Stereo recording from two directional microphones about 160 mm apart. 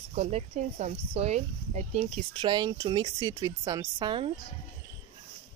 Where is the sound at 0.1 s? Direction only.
40° right (ahead or behind).